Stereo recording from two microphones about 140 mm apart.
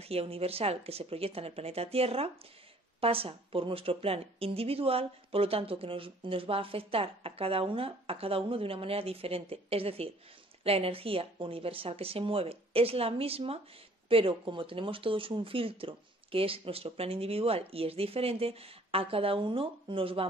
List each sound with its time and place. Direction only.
0.0 s speech: 45° right (ahead or behind)